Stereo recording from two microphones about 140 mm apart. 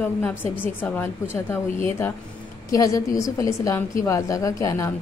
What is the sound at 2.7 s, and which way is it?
A woman's voice, 25° left (ahead or behind).